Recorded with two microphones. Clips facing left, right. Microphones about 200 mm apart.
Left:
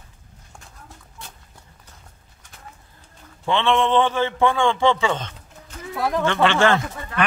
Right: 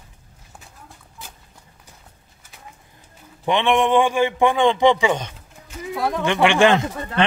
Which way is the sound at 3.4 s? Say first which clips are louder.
Right 2 dB; 15° right (ahead or behind).